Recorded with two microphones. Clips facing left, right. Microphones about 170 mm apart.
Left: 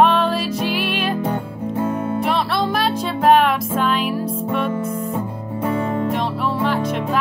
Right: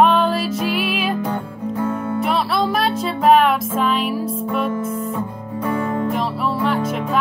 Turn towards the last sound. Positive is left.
turn(degrees=0)  # may be behind; listen again after turning